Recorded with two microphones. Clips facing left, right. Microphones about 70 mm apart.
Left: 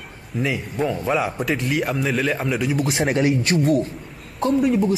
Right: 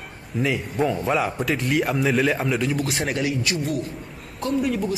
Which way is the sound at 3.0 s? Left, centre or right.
Left.